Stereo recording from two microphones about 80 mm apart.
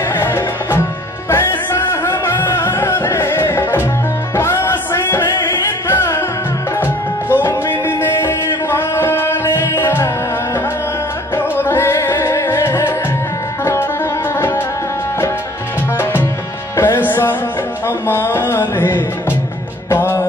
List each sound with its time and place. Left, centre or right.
0.1 s music: left
11.3 s music: left
16.0 s music: left
17.8 s a sound: left
19.9 s music: left